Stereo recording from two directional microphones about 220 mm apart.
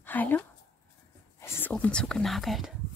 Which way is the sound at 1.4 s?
10° left (ahead or behind).